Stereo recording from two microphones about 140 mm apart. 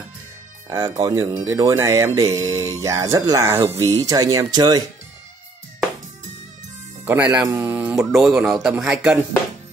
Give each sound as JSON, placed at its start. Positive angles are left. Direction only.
{"t": 0.7, "sound": "speech", "side_deg": -20}
{"t": 7.1, "sound": "speech", "side_deg": -10}
{"t": 7.9, "sound": "speech", "side_deg": -5}